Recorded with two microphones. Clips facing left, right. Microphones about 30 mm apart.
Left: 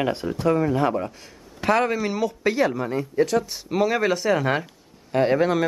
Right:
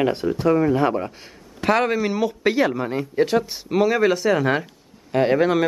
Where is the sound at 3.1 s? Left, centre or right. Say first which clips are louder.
Right 2 dB; right.